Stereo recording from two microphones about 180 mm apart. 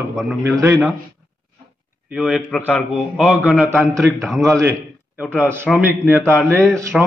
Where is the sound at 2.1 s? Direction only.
5° right (ahead or behind).